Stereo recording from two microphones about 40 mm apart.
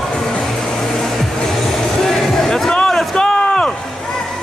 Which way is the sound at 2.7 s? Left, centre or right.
Left.